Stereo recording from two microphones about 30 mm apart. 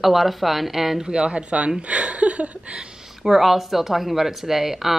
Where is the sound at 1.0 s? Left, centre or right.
Right.